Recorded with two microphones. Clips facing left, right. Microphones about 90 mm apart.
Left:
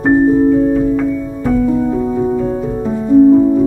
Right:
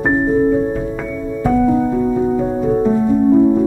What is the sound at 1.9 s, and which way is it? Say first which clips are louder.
Music: left 1 dB; 5° left (ahead or behind).